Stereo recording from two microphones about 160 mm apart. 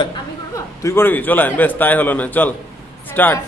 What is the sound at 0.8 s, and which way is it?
A man's voice, 15° left (ahead or behind).